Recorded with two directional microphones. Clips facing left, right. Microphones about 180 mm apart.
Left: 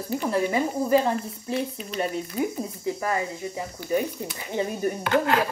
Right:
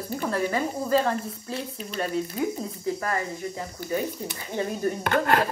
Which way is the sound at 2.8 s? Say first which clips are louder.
Left 1 dB; 15° left (ahead or behind).